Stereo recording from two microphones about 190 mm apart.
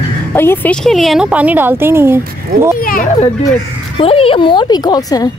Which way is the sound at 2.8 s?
50° left (ahead or behind).